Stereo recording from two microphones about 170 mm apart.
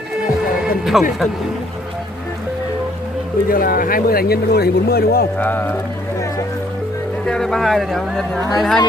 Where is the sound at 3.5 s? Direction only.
55° left (ahead or behind).